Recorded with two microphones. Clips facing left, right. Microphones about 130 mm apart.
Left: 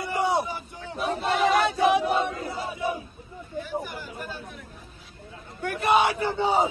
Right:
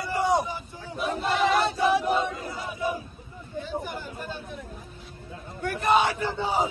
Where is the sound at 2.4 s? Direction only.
25° left (ahead or behind).